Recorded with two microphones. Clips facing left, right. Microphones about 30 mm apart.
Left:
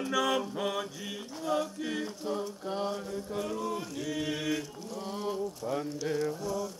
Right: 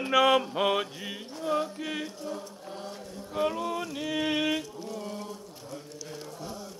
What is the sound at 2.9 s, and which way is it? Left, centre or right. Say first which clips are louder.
Mantra: left 5 dB; left.